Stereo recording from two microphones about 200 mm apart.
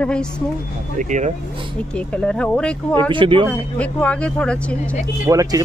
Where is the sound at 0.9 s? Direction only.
35° right (ahead or behind).